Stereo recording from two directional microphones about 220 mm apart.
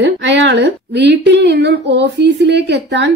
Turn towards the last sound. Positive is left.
turn(degrees=-50)  # may be behind; listen again after turning